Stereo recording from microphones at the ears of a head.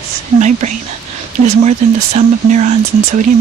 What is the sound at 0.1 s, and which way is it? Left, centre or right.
Speech, right.